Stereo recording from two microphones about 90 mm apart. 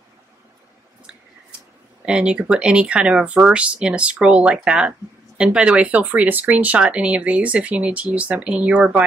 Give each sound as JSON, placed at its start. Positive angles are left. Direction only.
{"t": 2.0, "sound": "speech", "side_deg": -10}